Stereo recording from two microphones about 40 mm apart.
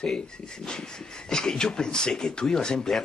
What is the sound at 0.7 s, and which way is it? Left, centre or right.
Speech, centre.